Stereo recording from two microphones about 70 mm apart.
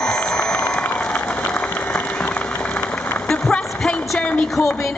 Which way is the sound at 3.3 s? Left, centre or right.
Centre.